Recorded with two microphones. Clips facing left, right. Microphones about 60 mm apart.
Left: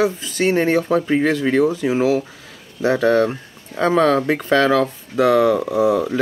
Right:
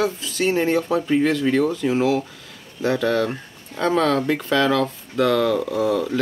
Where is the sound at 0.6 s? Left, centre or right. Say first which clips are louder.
Left 3 dB; left.